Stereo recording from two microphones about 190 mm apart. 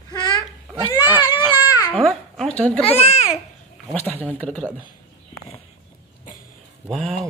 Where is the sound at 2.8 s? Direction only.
30° left (ahead or behind).